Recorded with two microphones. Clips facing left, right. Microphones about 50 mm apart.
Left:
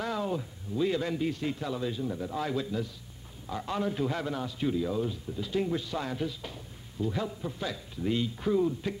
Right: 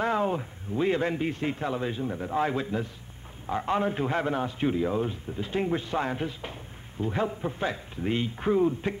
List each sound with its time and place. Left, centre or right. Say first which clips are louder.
0.0 s a man's voice: right 5 dB; right